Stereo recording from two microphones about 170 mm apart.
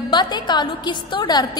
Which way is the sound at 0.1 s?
25° left (ahead or behind).